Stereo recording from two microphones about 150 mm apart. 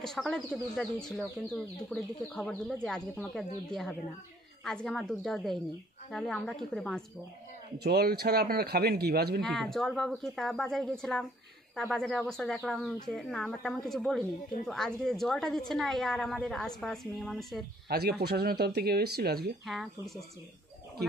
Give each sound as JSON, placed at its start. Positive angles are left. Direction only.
{"t": 0.0, "sound": "speech", "side_deg": 5}
{"t": 4.6, "sound": "speech", "side_deg": 5}
{"t": 7.8, "sound": "speech", "side_deg": -90}
{"t": 9.4, "sound": "speech", "side_deg": 0}
{"t": 17.8, "sound": "speech", "side_deg": -90}
{"t": 19.6, "sound": "speech", "side_deg": 0}